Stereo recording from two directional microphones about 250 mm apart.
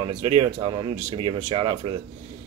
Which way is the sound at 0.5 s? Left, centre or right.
Centre.